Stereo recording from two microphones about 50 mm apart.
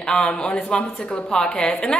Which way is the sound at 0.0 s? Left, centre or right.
Centre.